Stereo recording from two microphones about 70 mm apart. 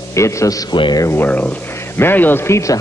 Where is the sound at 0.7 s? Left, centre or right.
Left.